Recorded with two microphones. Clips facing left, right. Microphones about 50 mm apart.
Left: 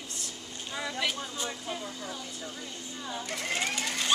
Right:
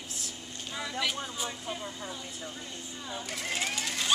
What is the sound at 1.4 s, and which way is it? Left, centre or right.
Vehicle, centre.